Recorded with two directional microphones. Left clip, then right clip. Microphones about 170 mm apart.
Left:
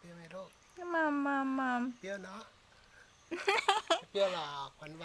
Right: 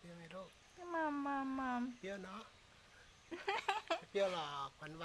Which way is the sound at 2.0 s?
Centre (ahead or behind).